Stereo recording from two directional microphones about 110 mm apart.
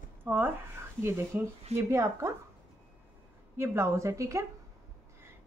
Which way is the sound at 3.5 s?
25° right (ahead or behind).